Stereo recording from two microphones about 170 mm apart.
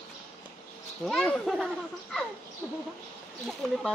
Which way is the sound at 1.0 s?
Centre (ahead or behind).